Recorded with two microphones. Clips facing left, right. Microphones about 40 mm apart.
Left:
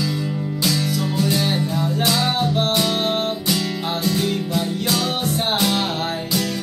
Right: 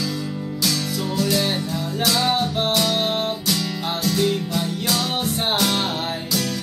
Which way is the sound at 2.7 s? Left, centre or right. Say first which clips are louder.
Left 1 dB; centre.